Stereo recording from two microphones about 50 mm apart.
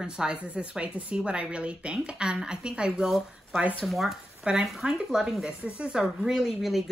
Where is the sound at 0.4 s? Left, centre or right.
Right.